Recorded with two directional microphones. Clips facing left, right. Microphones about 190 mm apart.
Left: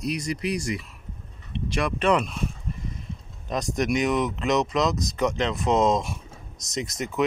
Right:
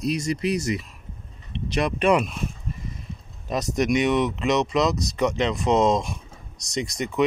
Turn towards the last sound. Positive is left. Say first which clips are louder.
# right 3 dB
turn(degrees=0)  # may be behind; listen again after turning